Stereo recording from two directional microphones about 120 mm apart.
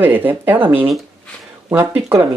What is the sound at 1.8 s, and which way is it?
Speech, 20° right (ahead or behind).